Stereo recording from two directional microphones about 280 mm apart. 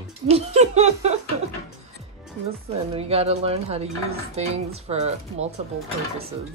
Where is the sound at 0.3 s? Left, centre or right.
Right.